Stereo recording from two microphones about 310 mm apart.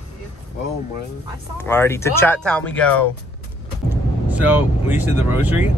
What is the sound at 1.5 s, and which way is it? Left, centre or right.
Speech, centre.